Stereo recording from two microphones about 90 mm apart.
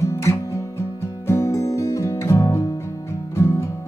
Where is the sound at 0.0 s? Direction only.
35° left (ahead or behind).